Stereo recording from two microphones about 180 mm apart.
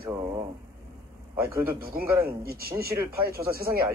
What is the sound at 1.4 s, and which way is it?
Speech, 10° right (ahead or behind).